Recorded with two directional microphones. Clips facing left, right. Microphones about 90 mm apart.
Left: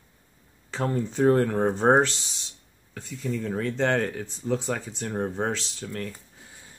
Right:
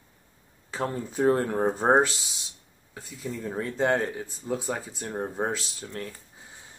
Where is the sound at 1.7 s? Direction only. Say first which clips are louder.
Even; 5° right (ahead or behind).